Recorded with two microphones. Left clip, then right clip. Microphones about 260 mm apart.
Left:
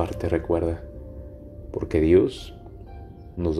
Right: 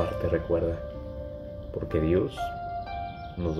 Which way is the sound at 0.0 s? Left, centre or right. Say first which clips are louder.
Left 2 dB; centre.